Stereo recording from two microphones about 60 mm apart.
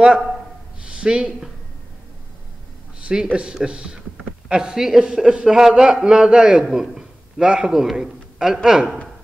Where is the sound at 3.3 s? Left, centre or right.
Centre.